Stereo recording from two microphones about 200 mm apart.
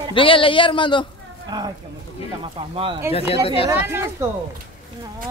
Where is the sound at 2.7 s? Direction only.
25° right (ahead or behind).